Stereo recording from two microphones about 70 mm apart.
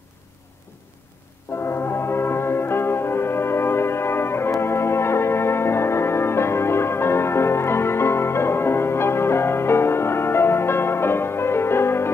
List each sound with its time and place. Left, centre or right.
1.7 s music: left